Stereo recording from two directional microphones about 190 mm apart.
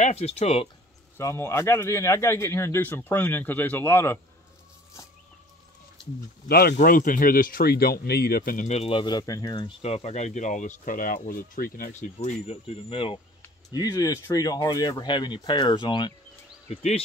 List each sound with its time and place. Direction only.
0.0 s speech: 35° left (ahead or behind)
1.1 s a man's voice: 15° left (ahead or behind)
6.5 s speech: 55° left (ahead or behind); by 9.7 s 20° left (ahead or behind)
9.8 s speech: 30° left (ahead or behind)